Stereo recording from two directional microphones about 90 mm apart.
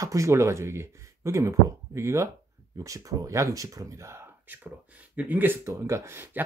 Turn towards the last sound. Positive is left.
turn(degrees=-25)  # may be behind; listen again after turning